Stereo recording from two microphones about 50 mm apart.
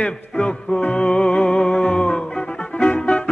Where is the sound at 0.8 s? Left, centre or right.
Left.